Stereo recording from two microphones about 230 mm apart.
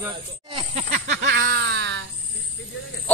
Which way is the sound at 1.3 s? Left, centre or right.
Right.